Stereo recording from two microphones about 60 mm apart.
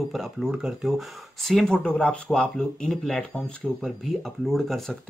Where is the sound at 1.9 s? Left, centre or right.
Centre.